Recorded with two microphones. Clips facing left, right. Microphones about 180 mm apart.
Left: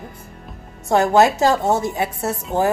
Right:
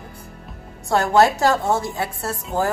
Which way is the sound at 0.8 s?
20° left (ahead or behind).